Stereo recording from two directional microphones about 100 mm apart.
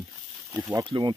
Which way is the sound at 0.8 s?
50° right (ahead or behind).